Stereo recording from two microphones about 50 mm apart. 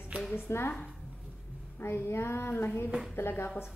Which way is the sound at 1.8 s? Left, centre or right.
Left.